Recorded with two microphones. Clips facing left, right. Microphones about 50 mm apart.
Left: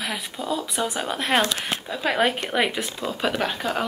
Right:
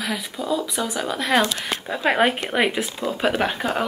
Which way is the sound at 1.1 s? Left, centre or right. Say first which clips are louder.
Right 3 dB; centre.